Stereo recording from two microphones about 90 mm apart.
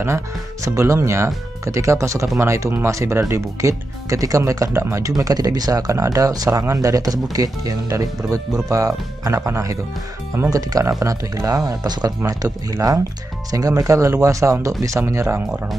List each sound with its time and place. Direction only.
0.7 s speech: 30° right (ahead or behind)